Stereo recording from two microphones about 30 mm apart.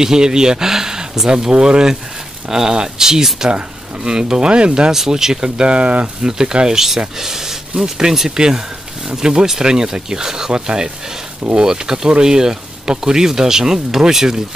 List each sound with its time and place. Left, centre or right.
0.0 s speech: right
1.5 s speech: right
2.5 s speech: right
3.4 s speech: right
5.1 s speech: right
7.2 s speech: centre